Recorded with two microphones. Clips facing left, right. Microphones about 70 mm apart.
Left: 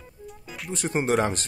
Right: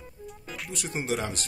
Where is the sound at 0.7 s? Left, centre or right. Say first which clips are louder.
Left 7 dB; left.